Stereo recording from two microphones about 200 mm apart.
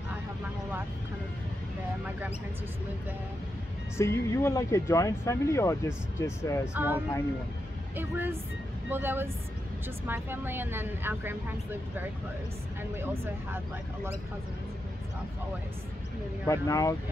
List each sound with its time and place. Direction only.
3.9 s speech: 15° left (ahead or behind)
6.7 s speech: 10° right (ahead or behind)
16.4 s speech: 15° left (ahead or behind)